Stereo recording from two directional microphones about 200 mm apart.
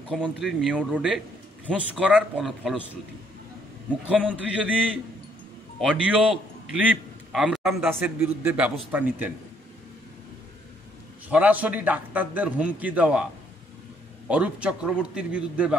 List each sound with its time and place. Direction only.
0.1 s a man's voice: centre (ahead or behind)
4.3 s a man's voice: 5° right (ahead or behind)
11.2 s a man's voice: 10° right (ahead or behind)
14.3 s a man's voice: 5° right (ahead or behind)